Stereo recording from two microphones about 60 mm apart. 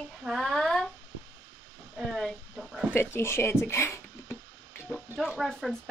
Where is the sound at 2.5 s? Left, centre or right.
Centre.